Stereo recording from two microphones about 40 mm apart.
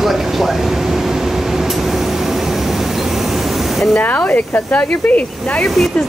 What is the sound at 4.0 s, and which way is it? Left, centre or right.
Speech, left.